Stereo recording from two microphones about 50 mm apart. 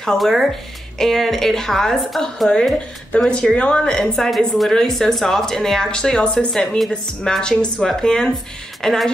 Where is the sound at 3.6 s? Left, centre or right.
Left.